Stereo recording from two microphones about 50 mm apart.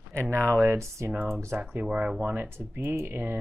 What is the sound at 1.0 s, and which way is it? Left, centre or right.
Speech, right.